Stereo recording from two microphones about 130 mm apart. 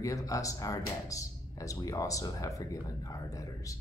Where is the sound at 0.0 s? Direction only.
25° left (ahead or behind).